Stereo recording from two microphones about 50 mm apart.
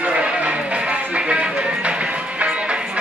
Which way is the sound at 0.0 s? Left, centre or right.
Right.